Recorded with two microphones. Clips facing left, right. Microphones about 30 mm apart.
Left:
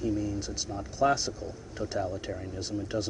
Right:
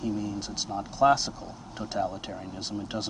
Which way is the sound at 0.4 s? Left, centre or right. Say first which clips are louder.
Right 2 dB; right.